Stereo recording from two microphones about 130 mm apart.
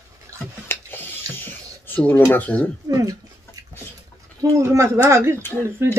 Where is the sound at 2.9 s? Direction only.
25° right (ahead or behind).